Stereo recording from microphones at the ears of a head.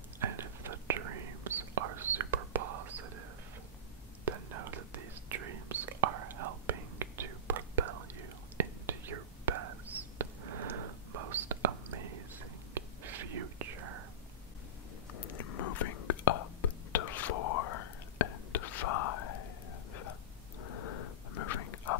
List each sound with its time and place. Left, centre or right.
0.2 s whispering: right
15.1 s whispering: left
20.6 s dog: left